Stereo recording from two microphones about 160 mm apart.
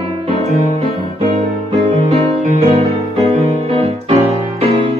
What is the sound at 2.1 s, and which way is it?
Music, 40° right (ahead or behind).